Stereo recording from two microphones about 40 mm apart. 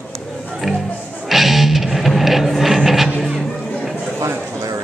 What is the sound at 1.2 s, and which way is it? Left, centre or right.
Music, centre.